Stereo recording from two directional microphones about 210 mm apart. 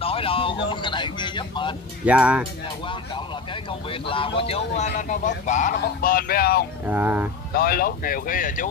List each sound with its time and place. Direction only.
0.0 s a sound: 25° left (ahead or behind)
0.7 s a man's voice: 20° left (ahead or behind)
2.0 s speech: 5° right (ahead or behind)
4.4 s speech: 30° left (ahead or behind); by 6.6 s 45° left (ahead or behind)
6.9 s speech: 10° right (ahead or behind)
7.5 s speech: 45° left (ahead or behind)